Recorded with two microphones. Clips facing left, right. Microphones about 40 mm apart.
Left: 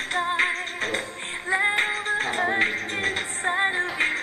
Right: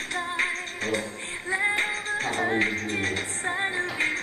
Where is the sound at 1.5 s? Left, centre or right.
Left.